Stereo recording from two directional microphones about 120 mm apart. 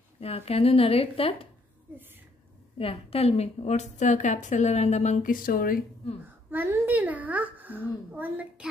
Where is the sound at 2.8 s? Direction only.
55° left (ahead or behind); by 5.3 s 70° left (ahead or behind).